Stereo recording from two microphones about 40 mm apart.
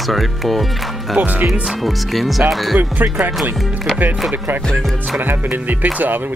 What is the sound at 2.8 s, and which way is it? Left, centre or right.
Speech, right.